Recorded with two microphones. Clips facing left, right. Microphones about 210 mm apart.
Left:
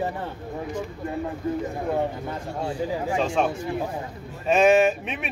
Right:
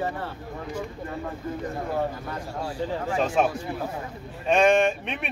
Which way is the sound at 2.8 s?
10° left (ahead or behind).